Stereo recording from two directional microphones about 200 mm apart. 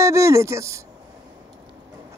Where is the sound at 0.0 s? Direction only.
15° right (ahead or behind).